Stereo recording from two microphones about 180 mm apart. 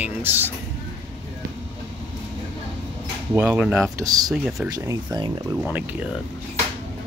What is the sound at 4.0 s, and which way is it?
Speech, 20° right (ahead or behind).